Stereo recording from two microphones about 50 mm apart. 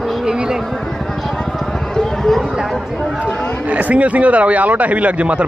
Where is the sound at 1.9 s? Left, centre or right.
Centre.